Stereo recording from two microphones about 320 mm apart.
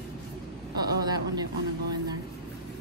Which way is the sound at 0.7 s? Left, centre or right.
Centre.